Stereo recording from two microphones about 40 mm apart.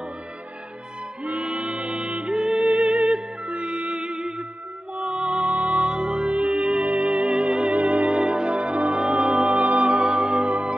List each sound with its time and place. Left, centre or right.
1.2 s music: right